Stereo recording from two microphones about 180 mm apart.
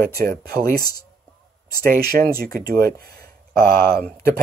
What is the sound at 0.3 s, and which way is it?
Speech, 55° right (ahead or behind).